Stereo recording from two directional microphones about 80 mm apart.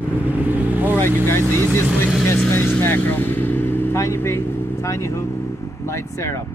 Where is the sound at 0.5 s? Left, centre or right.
Right.